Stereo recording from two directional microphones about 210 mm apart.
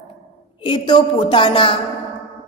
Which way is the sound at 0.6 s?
20° left (ahead or behind).